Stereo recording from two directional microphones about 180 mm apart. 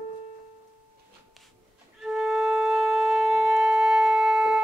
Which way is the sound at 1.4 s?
Centre (ahead or behind).